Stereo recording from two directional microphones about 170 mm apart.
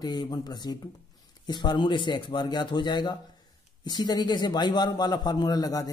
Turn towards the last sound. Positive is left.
turn(degrees=20)  # may be behind; listen again after turning